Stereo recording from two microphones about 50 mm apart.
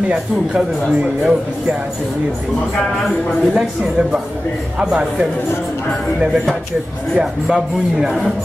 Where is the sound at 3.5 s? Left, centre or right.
Centre.